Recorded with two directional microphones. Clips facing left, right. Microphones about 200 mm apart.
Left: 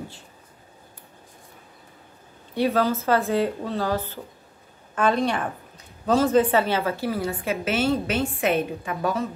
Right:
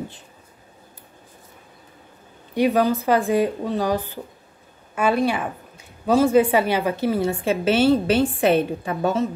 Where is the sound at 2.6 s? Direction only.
15° right (ahead or behind).